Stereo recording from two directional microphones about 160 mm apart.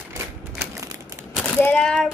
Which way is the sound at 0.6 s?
20° right (ahead or behind).